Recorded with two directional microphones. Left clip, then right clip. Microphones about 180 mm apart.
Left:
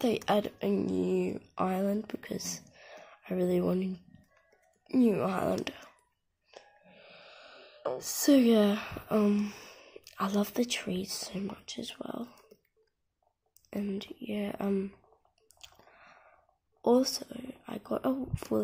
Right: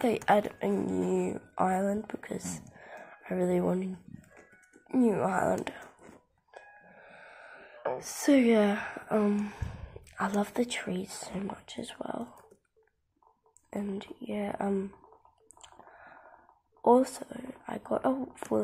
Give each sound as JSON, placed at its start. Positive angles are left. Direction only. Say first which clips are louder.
{"t": 0.0, "sound": "speech", "louder": "right 3 dB", "side_deg": 30}
{"t": 13.7, "sound": "speech", "louder": "even", "side_deg": 35}
{"t": 16.8, "sound": "speech", "louder": "right 3 dB", "side_deg": 30}